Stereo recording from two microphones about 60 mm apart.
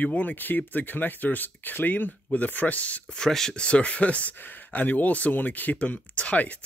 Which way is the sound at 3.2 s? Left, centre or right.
Centre.